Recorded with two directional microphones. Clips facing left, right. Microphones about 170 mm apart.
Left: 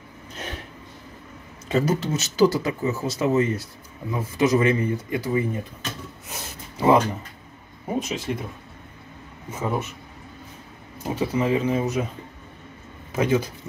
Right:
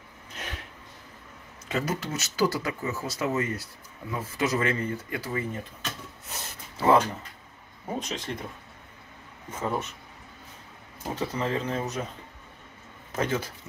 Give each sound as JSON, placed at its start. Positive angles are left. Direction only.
{"t": 0.3, "sound": "a sound", "side_deg": 30}
{"t": 1.7, "sound": "speech", "side_deg": 30}
{"t": 6.8, "sound": "speech", "side_deg": 15}
{"t": 9.5, "sound": "speech", "side_deg": 5}
{"t": 11.1, "sound": "speech", "side_deg": 10}
{"t": 13.1, "sound": "speech", "side_deg": 10}